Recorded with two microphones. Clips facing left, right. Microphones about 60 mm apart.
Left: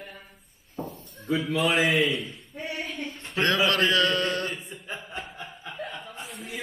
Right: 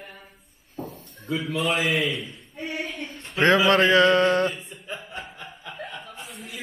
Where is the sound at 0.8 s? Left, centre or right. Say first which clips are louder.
Even; left.